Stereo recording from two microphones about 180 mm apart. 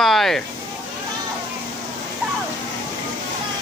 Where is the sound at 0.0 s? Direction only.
Centre (ahead or behind).